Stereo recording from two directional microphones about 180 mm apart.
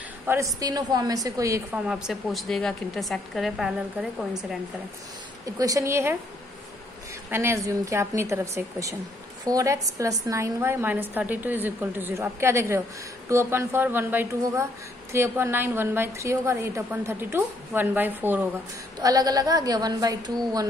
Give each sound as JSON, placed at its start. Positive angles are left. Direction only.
{"t": 0.6, "sound": "a woman's voice", "side_deg": -20}
{"t": 1.9, "sound": "a woman's voice", "side_deg": 0}
{"t": 5.4, "sound": "a woman's voice", "side_deg": -20}
{"t": 7.2, "sound": "a woman's voice", "side_deg": -15}
{"t": 18.9, "sound": "a woman's voice", "side_deg": -20}